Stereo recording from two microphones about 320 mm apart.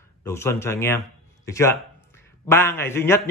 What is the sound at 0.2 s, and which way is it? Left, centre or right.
A man's voice, centre.